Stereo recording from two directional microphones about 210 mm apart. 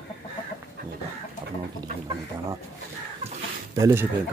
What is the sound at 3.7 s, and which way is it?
Speech, 15° right (ahead or behind).